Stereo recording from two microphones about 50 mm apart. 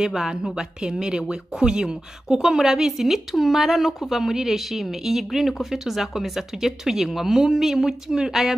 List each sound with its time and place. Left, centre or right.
0.0 s a woman's voice: centre